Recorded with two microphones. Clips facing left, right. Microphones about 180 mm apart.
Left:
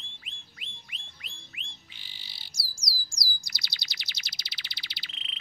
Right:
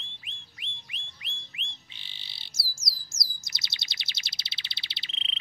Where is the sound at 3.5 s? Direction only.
25° right (ahead or behind).